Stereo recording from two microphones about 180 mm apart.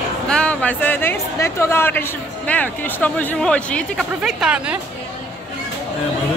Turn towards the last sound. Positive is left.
turn(degrees=-5)  # may be behind; listen again after turning